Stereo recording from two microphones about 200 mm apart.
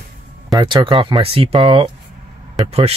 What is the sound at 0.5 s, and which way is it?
Speech, 20° right (ahead or behind).